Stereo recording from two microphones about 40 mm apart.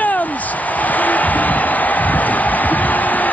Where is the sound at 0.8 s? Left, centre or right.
Left.